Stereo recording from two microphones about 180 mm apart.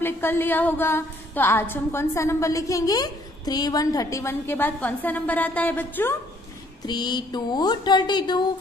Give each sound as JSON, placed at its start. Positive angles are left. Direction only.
{"t": 0.0, "sound": "a woman's voice", "side_deg": 10}
{"t": 6.9, "sound": "speech", "side_deg": 25}